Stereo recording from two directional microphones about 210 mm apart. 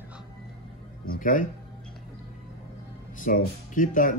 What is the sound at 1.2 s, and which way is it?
Speech, 40° left (ahead or behind).